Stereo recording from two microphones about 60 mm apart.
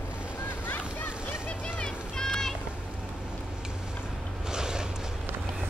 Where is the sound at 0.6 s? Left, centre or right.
Left.